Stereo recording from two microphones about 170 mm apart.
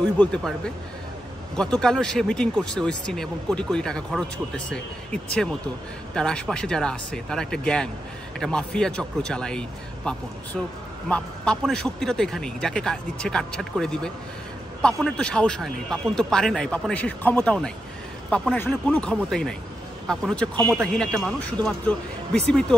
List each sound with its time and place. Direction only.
0.0 s speech: 5° left (ahead or behind)
1.6 s a man's voice: 5° left (ahead or behind)